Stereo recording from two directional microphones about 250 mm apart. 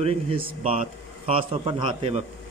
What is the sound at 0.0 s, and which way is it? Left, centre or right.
Speech, right.